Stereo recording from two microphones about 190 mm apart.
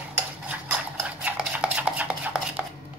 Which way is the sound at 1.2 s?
5° right (ahead or behind).